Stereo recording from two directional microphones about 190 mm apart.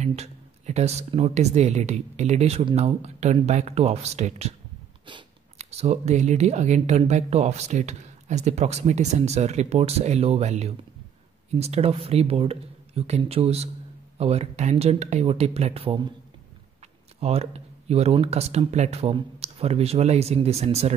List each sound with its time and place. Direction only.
0.0 s speech: 35° right (ahead or behind)
17.2 s speech: 35° right (ahead or behind)